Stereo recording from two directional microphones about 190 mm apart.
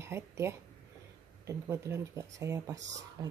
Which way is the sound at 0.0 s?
15° right (ahead or behind).